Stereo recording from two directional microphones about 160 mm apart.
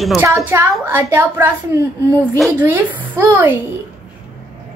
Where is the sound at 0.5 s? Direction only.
15° right (ahead or behind).